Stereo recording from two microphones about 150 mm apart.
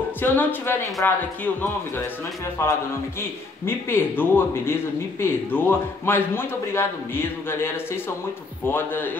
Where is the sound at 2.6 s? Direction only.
15° left (ahead or behind).